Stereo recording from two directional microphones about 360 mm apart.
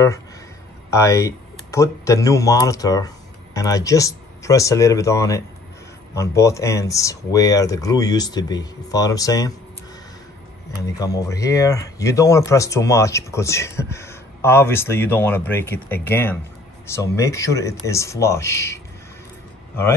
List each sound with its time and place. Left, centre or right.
0.8 s speech: centre
11.0 s speech: centre